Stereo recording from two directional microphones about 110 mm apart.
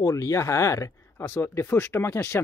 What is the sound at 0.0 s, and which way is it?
Speech, 30° left (ahead or behind).